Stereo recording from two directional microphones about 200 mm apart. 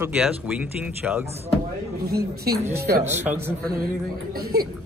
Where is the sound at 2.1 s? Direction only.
50° right (ahead or behind).